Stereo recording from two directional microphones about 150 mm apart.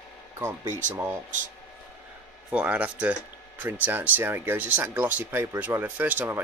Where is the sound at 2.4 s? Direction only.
10° right (ahead or behind).